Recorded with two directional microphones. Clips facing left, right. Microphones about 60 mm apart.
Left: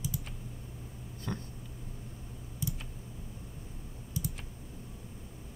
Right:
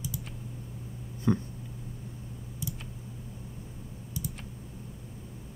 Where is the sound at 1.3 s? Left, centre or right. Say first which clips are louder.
Right 12 dB; centre.